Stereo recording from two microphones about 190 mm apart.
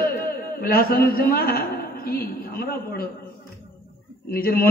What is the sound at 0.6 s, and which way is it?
A man's voice, 50° left (ahead or behind).